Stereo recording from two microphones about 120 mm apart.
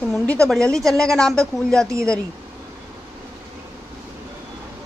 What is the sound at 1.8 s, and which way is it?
Speech, 25° right (ahead or behind).